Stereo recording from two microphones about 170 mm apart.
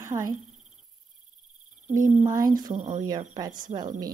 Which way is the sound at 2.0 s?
50° right (ahead or behind).